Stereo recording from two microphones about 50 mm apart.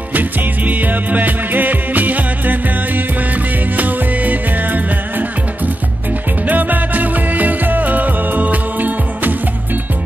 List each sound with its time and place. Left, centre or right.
0.1 s music: right
6.4 s music: right